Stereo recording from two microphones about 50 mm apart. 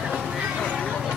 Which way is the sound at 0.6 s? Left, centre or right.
Centre.